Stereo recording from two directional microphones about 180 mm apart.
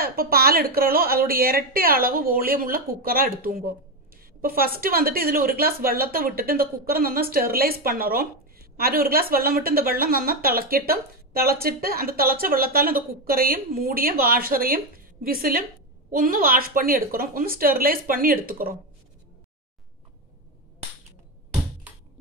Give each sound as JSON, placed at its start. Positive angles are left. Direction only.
{"t": 0.0, "sound": "a woman's voice", "side_deg": -55}